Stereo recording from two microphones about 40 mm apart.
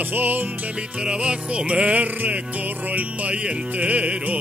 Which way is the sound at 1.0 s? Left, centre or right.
Right.